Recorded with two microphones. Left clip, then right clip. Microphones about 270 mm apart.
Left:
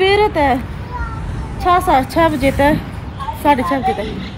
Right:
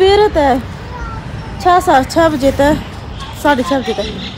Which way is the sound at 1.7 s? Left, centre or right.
Centre.